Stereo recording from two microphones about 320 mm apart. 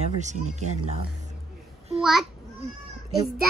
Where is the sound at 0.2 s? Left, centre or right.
Right.